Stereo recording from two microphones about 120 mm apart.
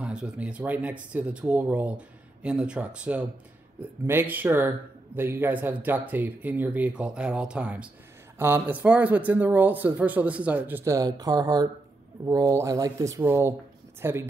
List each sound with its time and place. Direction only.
0.0 s speech: 10° right (ahead or behind)
11.0 s speech: 30° right (ahead or behind)